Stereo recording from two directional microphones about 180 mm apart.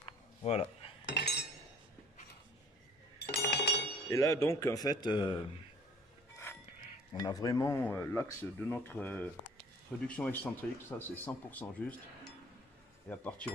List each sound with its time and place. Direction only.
0.0 s a sound: 35° left (ahead or behind)
1.0 s cutlery: 70° left (ahead or behind)
3.3 s chink: 65° left (ahead or behind)
4.1 s a man's voice: 20° left (ahead or behind)
7.2 s speech: 20° left (ahead or behind)